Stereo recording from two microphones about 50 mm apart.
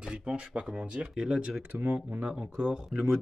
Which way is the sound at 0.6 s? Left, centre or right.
Right.